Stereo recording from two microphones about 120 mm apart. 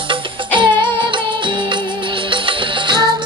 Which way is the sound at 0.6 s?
40° right (ahead or behind).